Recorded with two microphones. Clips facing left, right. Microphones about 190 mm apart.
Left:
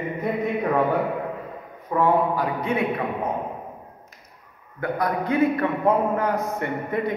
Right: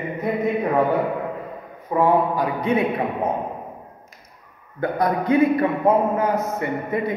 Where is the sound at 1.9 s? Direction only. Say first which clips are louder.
Right 2 dB; 15° right (ahead or behind).